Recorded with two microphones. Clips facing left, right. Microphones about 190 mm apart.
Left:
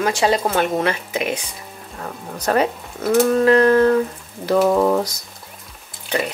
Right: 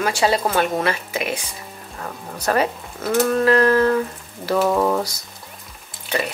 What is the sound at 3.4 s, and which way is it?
Speech, 15° left (ahead or behind).